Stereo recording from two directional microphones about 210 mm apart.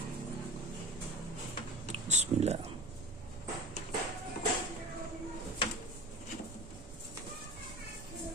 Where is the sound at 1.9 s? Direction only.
30° right (ahead or behind).